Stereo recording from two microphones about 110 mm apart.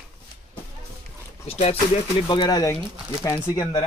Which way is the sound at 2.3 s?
35° left (ahead or behind).